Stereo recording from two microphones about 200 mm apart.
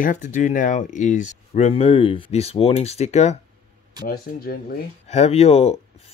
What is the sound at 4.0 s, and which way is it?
Speech, 50° left (ahead or behind).